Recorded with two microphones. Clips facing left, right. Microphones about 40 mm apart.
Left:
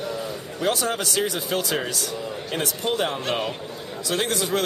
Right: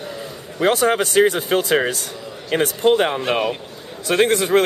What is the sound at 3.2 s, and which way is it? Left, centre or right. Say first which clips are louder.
Speech: right 6 dB; centre.